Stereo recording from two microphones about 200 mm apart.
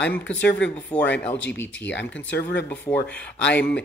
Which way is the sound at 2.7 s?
10° left (ahead or behind).